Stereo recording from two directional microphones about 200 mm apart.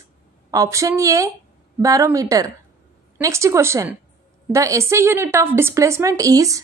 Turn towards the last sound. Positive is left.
turn(degrees=-15)  # may be behind; listen again after turning